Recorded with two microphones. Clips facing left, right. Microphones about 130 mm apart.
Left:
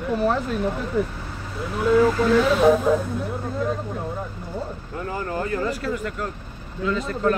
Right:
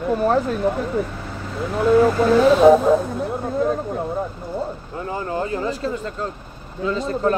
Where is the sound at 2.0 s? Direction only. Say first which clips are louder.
Right 3 dB; 30° right (ahead or behind).